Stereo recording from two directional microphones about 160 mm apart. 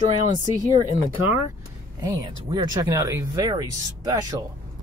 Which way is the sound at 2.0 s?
20° right (ahead or behind).